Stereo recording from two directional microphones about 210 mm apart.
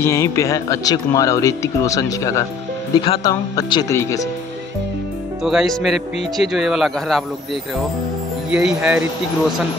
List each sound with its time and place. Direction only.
0.0 s speech: 15° left (ahead or behind)
5.4 s speech: centre (ahead or behind)
8.5 s speech: 5° right (ahead or behind)